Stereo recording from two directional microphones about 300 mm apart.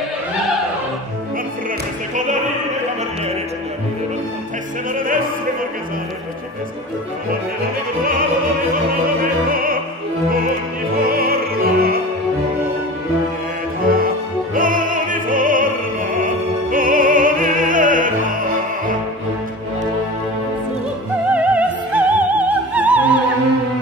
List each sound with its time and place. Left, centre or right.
9.0 s opera: right
11.1 s opera: right
13.8 s opera: right
16.7 s opera: right
21.3 s opera: centre